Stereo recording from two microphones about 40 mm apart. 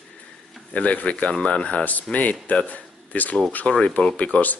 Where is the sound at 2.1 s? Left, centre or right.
Left.